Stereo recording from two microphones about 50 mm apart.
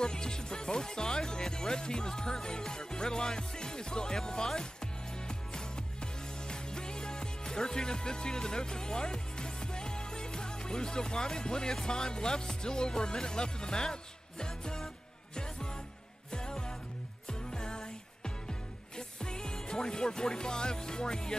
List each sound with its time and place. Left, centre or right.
0.0 s music: centre
6.5 s speech: centre
14.4 s music: centre
16.3 s music: centre